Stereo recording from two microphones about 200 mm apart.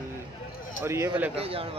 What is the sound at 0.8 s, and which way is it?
Speech, 15° right (ahead or behind).